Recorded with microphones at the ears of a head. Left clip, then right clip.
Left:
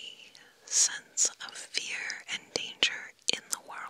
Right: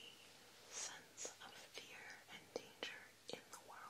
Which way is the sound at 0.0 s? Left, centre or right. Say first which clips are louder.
Left 14 dB; left.